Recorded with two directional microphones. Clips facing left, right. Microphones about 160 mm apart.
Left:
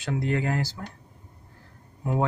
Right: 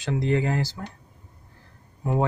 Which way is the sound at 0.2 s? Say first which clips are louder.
Right 3 dB; 20° right (ahead or behind).